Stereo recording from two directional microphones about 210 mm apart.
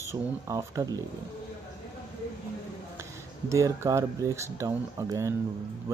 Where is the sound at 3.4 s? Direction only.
15° right (ahead or behind).